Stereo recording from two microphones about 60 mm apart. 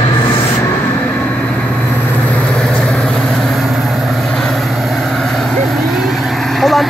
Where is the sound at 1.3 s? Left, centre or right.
Centre.